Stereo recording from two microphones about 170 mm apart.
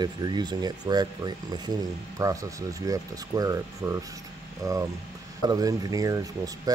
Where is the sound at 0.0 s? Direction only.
25° right (ahead or behind).